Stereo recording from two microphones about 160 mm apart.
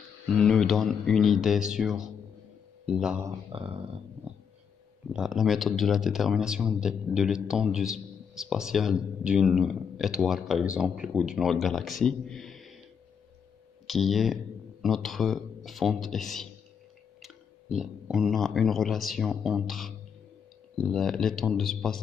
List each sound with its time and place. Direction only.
0.3 s speech: 5° left (ahead or behind)
3.5 s speech: 35° right (ahead or behind)
4.3 s a sound: 10° right (ahead or behind)
5.1 s speech: 5° right (ahead or behind)
13.8 s speech: centre (ahead or behind)